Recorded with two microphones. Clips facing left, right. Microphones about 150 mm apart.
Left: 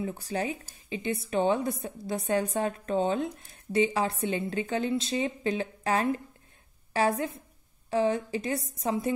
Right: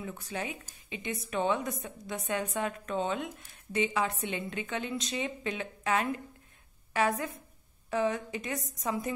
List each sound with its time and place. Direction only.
0.0 s a woman's voice: 35° left (ahead or behind)